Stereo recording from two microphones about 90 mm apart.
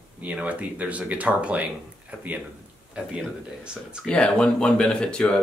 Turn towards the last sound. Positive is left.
turn(degrees=10)  # may be behind; listen again after turning